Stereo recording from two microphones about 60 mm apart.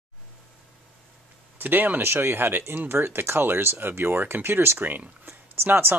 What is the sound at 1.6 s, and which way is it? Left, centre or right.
Speech, right.